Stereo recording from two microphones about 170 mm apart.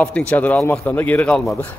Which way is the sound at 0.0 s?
5° left (ahead or behind).